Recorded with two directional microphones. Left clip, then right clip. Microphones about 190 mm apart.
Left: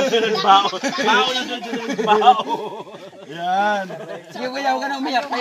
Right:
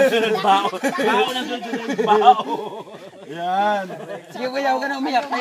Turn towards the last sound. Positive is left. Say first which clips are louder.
# even
turn(degrees=-5)  # may be behind; listen again after turning